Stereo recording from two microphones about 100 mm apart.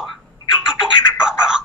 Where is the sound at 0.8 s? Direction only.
5° right (ahead or behind).